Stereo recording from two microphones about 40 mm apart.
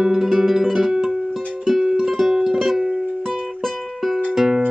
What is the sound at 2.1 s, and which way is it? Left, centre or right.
Music, centre.